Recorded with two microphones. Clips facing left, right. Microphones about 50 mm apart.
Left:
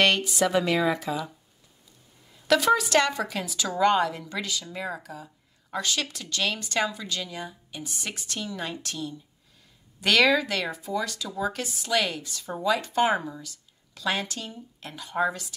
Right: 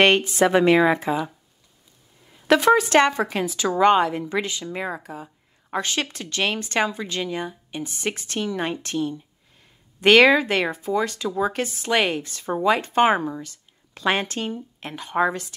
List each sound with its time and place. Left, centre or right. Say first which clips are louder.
0.0 s speech: right 5 dB; right
2.3 s speech: right 5 dB; right